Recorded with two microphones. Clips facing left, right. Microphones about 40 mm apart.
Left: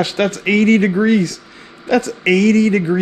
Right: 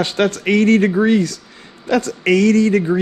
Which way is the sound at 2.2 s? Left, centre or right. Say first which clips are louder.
Even; left.